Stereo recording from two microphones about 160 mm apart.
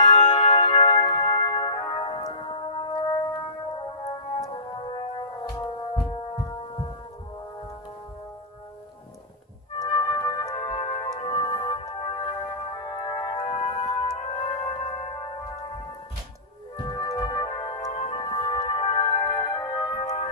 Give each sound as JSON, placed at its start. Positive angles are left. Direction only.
{"t": 0.0, "sound": "music", "side_deg": 35}
{"t": 4.5, "sound": "music", "side_deg": 30}
{"t": 9.8, "sound": "music", "side_deg": 25}
{"t": 16.7, "sound": "music", "side_deg": 25}
{"t": 20.0, "sound": "music", "side_deg": 45}